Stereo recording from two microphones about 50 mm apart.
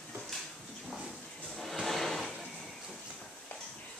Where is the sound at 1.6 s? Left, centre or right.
Centre.